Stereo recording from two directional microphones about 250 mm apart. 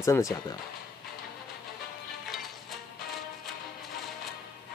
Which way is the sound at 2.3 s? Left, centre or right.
Centre.